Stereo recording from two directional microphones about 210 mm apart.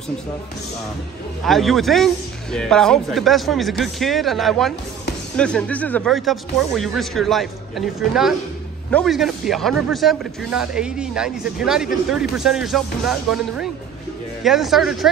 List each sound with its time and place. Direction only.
1.4 s speech: centre (ahead or behind)